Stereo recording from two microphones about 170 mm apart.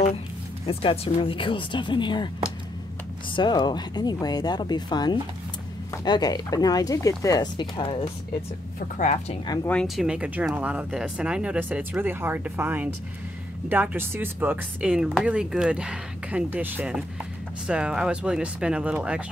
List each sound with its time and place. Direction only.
0.7 s speech: 30° left (ahead or behind)
3.3 s speech: 25° left (ahead or behind)
8.7 s speech: 45° left (ahead or behind)
9.7 s speech: 5° left (ahead or behind)